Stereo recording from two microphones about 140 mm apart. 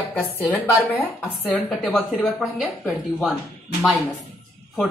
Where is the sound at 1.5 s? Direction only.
Centre (ahead or behind).